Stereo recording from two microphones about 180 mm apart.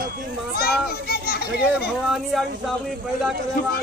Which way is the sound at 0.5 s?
60° left (ahead or behind).